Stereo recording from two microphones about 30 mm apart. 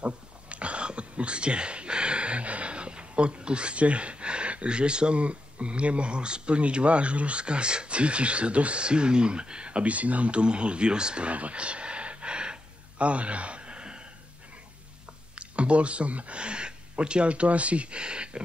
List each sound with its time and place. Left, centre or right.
0.0 s whispering: right
5.2 s speech: right
11.2 s gasp: right
15.3 s speech: right
16.3 s speech: right